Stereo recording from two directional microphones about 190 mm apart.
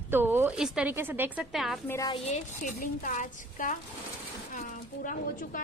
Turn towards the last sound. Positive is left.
turn(degrees=45)  # may be behind; listen again after turning